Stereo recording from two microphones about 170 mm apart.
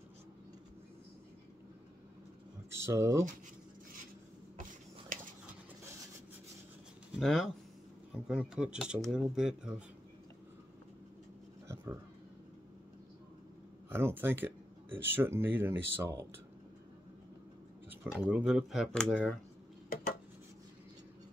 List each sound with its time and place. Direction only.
2.7 s speech: 15° right (ahead or behind)
5.1 s a sound: 50° right (ahead or behind)
7.2 s speech: 5° left (ahead or behind)
11.6 s a sound: 15° right (ahead or behind)
13.8 s speech: 10° right (ahead or behind)
17.8 s speech: 10° right (ahead or behind)